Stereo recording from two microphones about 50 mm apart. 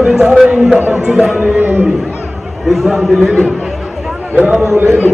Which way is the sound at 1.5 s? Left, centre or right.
Right.